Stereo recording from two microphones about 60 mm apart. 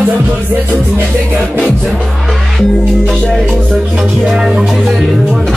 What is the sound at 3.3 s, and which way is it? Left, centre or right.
Music, centre.